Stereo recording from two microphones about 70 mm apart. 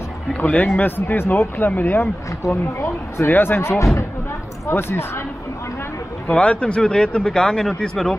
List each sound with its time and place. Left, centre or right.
0.4 s speech: centre
0.7 s speech: left
2.4 s speech: left
3.3 s speech: left
6.3 s speech: centre